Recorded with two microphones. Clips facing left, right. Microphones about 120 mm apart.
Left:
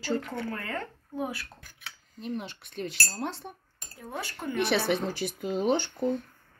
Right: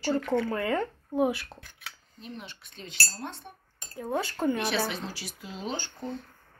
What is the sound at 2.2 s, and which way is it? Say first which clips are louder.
Speech: left 8 dB; 50° left (ahead or behind).